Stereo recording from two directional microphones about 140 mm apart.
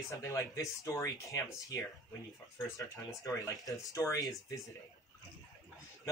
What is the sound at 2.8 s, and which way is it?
Speech, 25° left (ahead or behind).